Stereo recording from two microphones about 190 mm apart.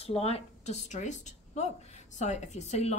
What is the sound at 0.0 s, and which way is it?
A woman's voice, 30° left (ahead or behind).